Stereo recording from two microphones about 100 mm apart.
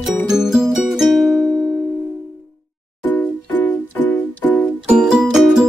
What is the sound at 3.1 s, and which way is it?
Music, 10° left (ahead or behind).